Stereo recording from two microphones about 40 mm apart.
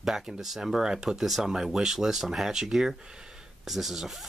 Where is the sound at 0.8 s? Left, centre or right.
Centre.